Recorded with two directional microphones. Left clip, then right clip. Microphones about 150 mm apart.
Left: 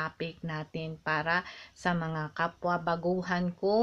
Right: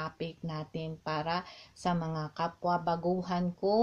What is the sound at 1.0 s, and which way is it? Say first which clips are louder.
Speech: left 5 dB; 25° left (ahead or behind).